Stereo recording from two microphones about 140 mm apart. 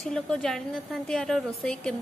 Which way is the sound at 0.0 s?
5° left (ahead or behind).